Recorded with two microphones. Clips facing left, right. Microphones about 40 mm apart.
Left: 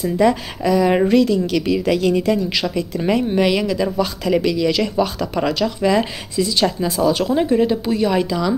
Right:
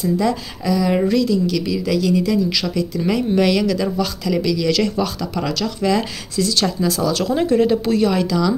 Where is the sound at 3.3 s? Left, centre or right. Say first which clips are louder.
Right 1 dB; centre.